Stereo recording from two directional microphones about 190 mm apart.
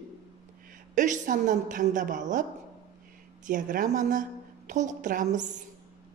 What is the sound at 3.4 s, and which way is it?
A woman's voice, 45° right (ahead or behind).